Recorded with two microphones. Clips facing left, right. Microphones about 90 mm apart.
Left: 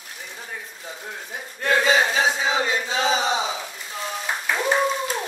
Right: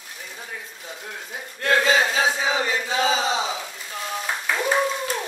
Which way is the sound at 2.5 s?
20° left (ahead or behind).